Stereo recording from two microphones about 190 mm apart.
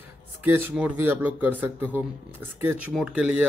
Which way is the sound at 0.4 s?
10° right (ahead or behind).